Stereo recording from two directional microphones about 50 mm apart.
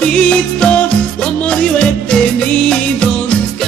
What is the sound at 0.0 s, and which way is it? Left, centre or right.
Music, left.